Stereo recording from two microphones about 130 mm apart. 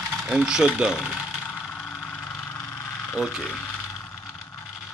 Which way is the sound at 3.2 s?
5° right (ahead or behind).